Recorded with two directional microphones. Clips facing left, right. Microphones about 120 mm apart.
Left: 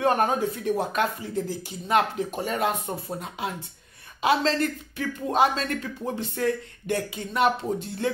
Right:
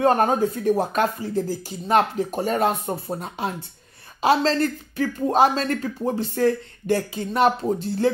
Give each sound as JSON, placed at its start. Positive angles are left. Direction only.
{"t": 0.0, "sound": "speech", "side_deg": -35}